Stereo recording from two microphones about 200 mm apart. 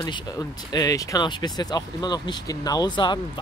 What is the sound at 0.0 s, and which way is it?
Speech, 20° left (ahead or behind).